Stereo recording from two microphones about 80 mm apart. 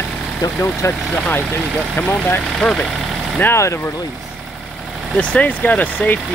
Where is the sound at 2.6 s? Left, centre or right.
Centre.